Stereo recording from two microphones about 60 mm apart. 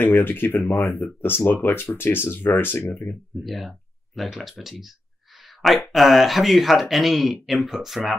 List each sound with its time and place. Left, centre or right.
0.0 s speech: left
3.4 s speech: centre
5.4 s a sound: centre
5.9 s speech: centre